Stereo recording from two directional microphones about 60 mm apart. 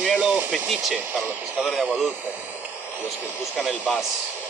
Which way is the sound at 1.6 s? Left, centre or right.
Centre.